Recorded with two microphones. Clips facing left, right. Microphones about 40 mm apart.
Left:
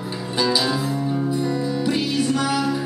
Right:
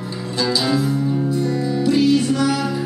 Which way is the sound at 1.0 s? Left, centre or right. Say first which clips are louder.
Right 2 dB; centre.